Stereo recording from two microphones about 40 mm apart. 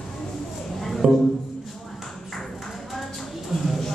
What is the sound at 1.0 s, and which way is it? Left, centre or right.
Speech, right.